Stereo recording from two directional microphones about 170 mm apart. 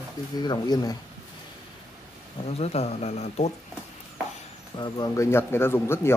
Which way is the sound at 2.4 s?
40° left (ahead or behind).